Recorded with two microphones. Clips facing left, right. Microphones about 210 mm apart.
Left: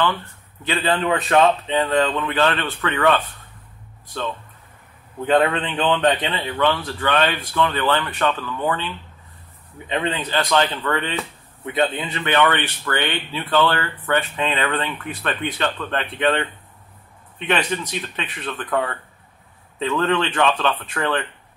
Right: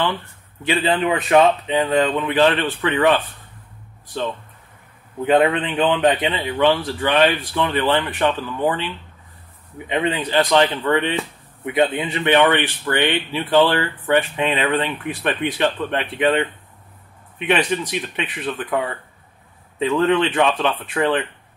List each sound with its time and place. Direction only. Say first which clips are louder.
0.7 s speech: right 2 dB; 15° right (ahead or behind)
5.2 s speech: right 2 dB; 15° right (ahead or behind)
10.3 s speech: right 4 dB; 15° right (ahead or behind)
19.8 s speech: right 3 dB; 15° right (ahead or behind)